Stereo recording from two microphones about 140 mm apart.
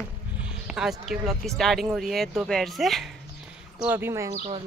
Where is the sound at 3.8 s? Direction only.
15° right (ahead or behind).